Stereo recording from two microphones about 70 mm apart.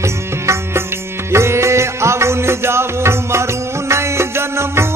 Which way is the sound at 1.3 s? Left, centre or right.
Right.